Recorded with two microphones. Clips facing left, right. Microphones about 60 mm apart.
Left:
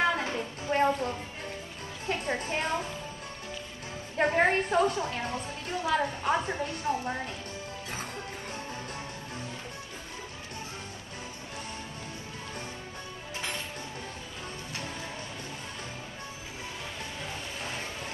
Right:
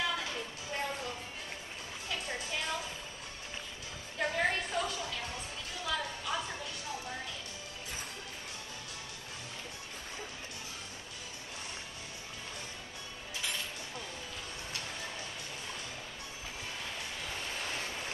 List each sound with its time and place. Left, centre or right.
0.0 s music: left
2.0 s a sound: left
4.2 s music: left